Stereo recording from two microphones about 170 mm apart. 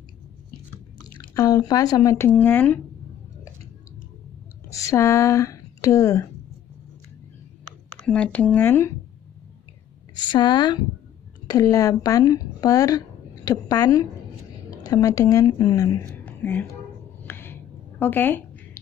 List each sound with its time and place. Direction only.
1.3 s speech: 20° left (ahead or behind)
4.6 s speech: 20° left (ahead or behind)
8.0 s speech: 5° left (ahead or behind)
10.3 s speech: 25° left (ahead or behind)
16.3 s whispering: 10° left (ahead or behind)
17.3 s a sound: 15° left (ahead or behind)